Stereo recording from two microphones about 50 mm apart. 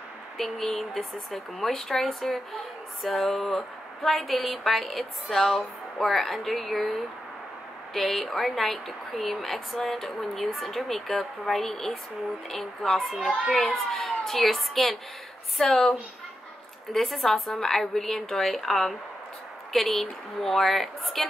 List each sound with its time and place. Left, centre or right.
0.4 s speech: centre
15.6 s speech: centre
16.9 s speech: centre